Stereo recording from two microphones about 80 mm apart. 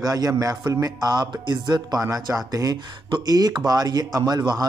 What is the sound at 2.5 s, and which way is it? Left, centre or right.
Speech, right.